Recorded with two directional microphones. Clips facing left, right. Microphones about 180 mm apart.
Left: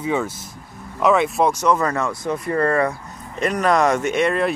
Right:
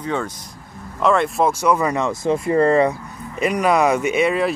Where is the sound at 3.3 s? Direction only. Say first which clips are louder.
Right 1 dB; 10° right (ahead or behind).